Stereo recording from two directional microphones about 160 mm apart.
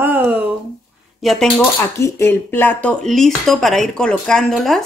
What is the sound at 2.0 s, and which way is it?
Speech, 15° left (ahead or behind).